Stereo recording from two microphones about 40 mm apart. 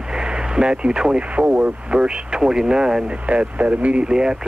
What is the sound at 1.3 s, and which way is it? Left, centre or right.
Speech, right.